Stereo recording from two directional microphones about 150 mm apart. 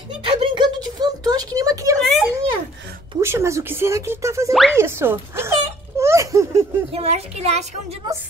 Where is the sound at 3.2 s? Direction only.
20° right (ahead or behind).